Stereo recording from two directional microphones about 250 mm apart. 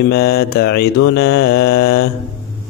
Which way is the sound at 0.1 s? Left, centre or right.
Left.